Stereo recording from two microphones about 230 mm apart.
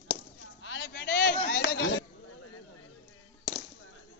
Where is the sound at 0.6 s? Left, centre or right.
Left.